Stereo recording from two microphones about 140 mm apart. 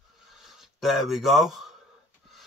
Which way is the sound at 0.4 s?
Centre (ahead or behind).